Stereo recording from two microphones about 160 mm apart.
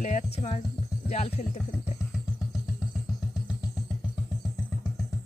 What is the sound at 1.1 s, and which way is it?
Speech, 40° left (ahead or behind).